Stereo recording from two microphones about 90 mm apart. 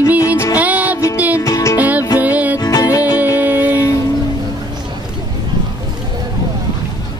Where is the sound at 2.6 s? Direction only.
40° left (ahead or behind).